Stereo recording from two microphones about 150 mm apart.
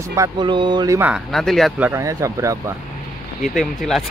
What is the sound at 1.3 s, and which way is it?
Speech, centre (ahead or behind).